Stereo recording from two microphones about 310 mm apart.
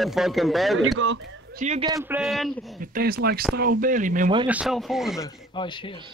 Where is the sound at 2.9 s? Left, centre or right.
Right.